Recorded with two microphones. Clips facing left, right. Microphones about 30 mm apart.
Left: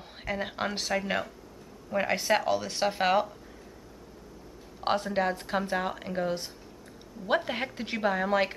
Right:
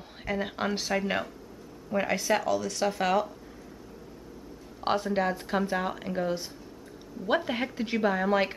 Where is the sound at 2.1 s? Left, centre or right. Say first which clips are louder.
Even; left.